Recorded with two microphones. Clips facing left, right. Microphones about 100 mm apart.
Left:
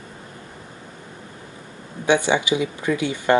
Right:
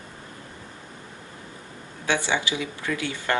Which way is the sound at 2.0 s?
15° left (ahead or behind).